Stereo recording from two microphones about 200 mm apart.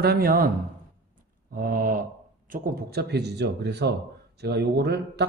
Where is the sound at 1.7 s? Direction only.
45° right (ahead or behind).